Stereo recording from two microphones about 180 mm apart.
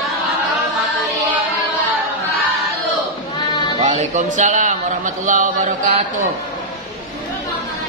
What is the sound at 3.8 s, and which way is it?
Music, 40° right (ahead or behind).